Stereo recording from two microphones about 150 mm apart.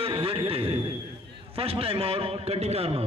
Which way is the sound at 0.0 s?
40° right (ahead or behind).